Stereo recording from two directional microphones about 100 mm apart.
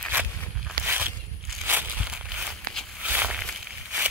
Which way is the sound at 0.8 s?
20° right (ahead or behind).